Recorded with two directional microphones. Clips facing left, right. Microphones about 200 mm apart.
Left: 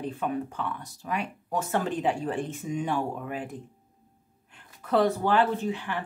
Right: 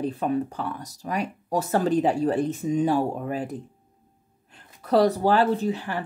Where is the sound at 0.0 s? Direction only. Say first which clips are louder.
Right 5 dB; 35° right (ahead or behind).